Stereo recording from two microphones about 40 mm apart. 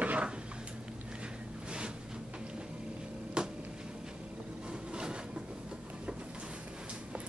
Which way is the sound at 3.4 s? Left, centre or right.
Right.